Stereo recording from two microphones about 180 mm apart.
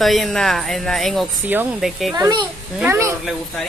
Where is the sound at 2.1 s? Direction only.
20° right (ahead or behind).